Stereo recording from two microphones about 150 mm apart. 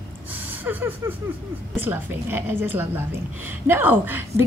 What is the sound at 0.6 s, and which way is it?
A woman's voice, 10° right (ahead or behind).